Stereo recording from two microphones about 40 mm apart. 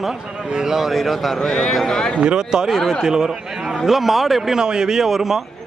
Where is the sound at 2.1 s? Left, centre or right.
Centre.